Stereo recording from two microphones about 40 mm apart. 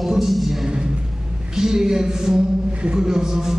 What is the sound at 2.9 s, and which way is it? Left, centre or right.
Speech, centre.